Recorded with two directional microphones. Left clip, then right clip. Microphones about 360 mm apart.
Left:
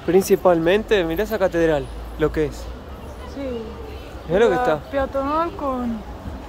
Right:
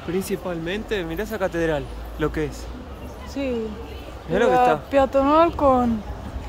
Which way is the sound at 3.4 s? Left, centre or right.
Right.